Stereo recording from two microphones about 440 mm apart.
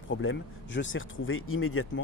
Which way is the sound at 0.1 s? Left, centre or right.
Left.